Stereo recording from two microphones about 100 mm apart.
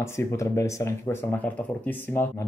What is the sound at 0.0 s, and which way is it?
Speech, 30° left (ahead or behind).